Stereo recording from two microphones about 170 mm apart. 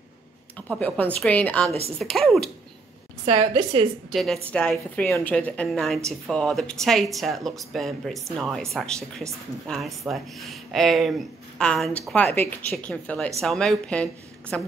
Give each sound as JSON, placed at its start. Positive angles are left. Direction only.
{"t": 0.6, "sound": "a woman's voice", "side_deg": 10}
{"t": 3.3, "sound": "a woman's voice", "side_deg": -30}
{"t": 4.1, "sound": "a woman's voice", "side_deg": 0}